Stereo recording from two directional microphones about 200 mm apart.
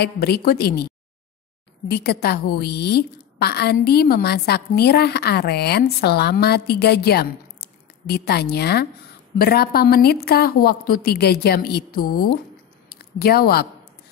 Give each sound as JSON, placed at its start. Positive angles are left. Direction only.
{"t": 0.0, "sound": "a woman's voice", "side_deg": 50}